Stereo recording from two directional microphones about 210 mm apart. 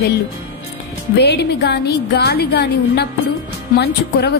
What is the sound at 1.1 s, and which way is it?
A woman's voice, 50° left (ahead or behind).